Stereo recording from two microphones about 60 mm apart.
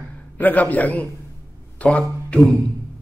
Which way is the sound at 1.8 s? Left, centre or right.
Left.